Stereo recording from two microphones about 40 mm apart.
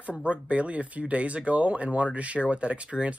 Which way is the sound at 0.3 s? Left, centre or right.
Right.